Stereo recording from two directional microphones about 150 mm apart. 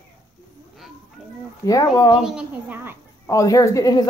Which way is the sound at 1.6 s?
25° left (ahead or behind).